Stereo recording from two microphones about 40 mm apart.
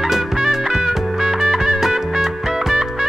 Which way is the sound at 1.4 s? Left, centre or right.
Centre.